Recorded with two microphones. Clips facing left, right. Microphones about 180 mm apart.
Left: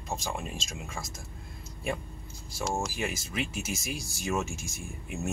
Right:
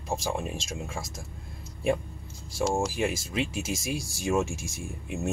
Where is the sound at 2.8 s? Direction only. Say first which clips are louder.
Right 5 dB; 25° right (ahead or behind).